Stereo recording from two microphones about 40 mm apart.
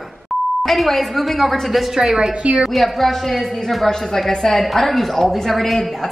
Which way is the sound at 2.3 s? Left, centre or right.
Right.